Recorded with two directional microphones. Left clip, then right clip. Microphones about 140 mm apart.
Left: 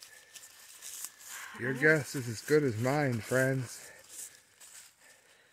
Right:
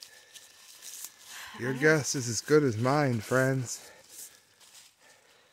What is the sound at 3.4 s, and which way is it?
Rattle, 30° right (ahead or behind).